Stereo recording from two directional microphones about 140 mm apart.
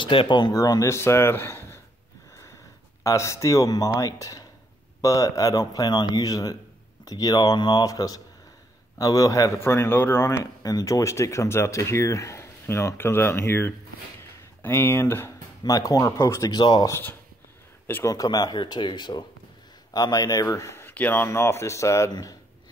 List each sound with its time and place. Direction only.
0.0 s a man's voice: 35° left (ahead or behind); by 1.8 s 20° left (ahead or behind)
3.0 s a man's voice: 20° left (ahead or behind)
17.8 s speech: 15° left (ahead or behind)
18.1 s a man's voice: 25° left (ahead or behind)